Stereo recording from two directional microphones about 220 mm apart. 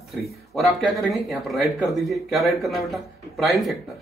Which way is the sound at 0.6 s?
Centre (ahead or behind).